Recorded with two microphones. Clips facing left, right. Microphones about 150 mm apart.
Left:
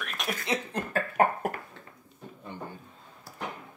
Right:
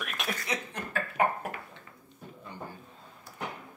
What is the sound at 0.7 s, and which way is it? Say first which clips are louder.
Cough: left 5 dB; 40° left (ahead or behind).